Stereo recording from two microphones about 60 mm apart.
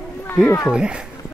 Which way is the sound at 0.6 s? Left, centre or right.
Centre.